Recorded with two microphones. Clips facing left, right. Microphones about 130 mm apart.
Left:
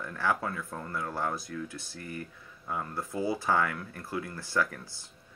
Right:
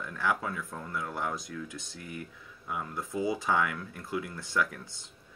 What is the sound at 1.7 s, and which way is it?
Speech, 15° right (ahead or behind).